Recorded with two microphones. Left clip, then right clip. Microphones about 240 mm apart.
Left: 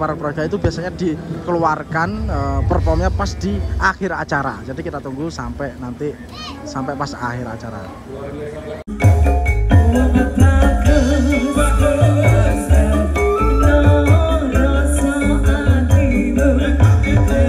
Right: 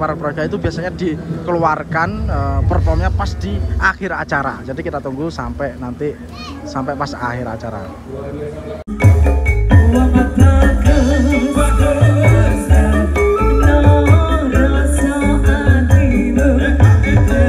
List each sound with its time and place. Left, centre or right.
0.0 s a man's voice: centre
9.0 s music: centre